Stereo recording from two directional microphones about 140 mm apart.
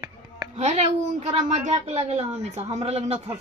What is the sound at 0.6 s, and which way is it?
A woman's voice, 55° right (ahead or behind).